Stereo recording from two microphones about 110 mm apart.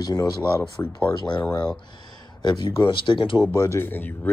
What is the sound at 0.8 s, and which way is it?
Speech, 20° left (ahead or behind).